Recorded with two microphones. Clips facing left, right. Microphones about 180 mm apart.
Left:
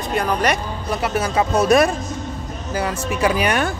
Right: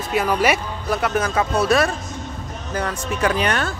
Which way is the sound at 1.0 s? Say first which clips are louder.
Even; 5° left (ahead or behind).